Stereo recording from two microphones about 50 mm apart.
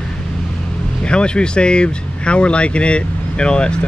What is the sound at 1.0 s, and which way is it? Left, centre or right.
Speech, centre.